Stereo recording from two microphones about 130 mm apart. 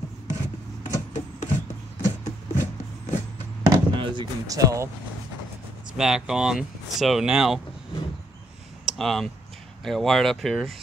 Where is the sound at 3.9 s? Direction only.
40° right (ahead or behind).